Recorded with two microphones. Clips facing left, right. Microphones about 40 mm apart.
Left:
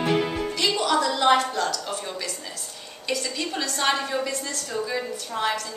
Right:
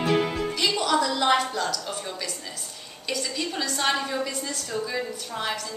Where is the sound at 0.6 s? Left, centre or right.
Centre.